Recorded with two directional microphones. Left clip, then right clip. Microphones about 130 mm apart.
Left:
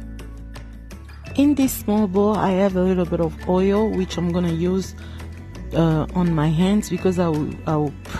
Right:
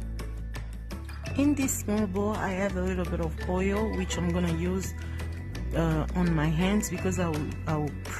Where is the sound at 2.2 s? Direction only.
65° left (ahead or behind).